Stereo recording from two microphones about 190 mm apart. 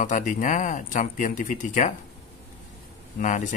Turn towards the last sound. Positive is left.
turn(degrees=40)  # may be behind; listen again after turning